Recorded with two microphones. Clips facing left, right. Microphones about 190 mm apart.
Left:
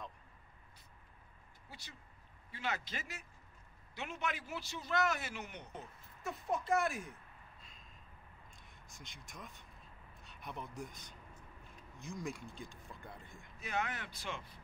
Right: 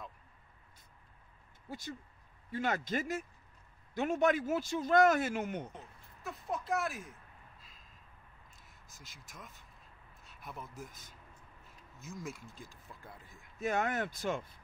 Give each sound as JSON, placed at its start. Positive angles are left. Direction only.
{"t": 1.7, "sound": "speech", "side_deg": -45}
{"t": 5.7, "sound": "a sound", "side_deg": 0}
{"t": 8.6, "sound": "speech", "side_deg": 0}
{"t": 13.6, "sound": "speech", "side_deg": -45}